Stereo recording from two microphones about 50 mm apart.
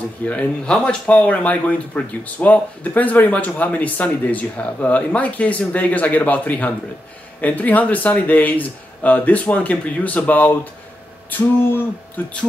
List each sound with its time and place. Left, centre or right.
0.2 s speech: left
0.7 s speech: centre
1.1 s speech: left